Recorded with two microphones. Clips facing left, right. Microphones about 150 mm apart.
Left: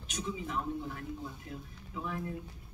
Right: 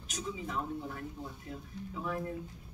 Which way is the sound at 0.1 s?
40° right (ahead or behind).